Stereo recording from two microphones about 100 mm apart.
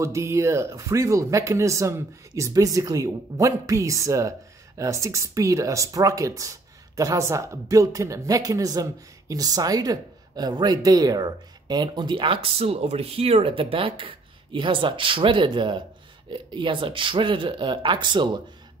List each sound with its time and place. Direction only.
0.0 s speech: 30° right (ahead or behind); by 18.4 s 50° right (ahead or behind)